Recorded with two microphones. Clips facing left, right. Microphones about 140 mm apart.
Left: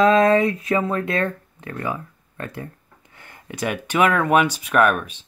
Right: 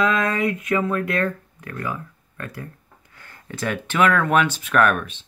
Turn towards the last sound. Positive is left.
turn(degrees=10)  # may be behind; listen again after turning